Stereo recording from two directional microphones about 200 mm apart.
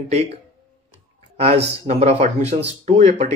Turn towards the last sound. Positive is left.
turn(degrees=-35)  # may be behind; listen again after turning